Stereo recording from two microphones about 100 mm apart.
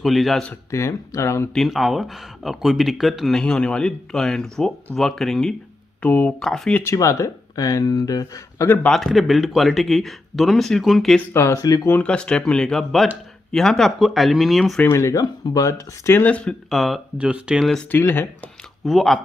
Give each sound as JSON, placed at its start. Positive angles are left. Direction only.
{"t": 0.0, "sound": "speech", "side_deg": 0}
{"t": 0.7, "sound": "speech", "side_deg": 30}
{"t": 1.5, "sound": "speech", "side_deg": 0}
{"t": 6.0, "sound": "speech", "side_deg": 15}
{"t": 6.4, "sound": "speech", "side_deg": 5}
{"t": 6.8, "sound": "speech", "side_deg": 30}
{"t": 8.8, "sound": "speech", "side_deg": 0}
{"t": 11.3, "sound": "speech", "side_deg": 35}
{"t": 11.9, "sound": "speech", "side_deg": 10}
{"t": 14.8, "sound": "speech", "side_deg": 25}
{"t": 16.2, "sound": "speech", "side_deg": 15}
{"t": 16.7, "sound": "speech", "side_deg": 0}
{"t": 17.9, "sound": "speech", "side_deg": 20}
{"t": 18.9, "sound": "speech", "side_deg": 0}